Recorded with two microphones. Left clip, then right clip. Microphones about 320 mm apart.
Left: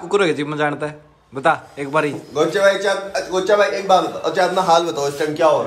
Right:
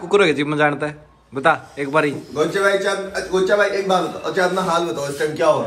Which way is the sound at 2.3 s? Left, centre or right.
Centre.